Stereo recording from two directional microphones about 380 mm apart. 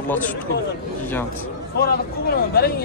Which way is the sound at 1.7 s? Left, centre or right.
Left.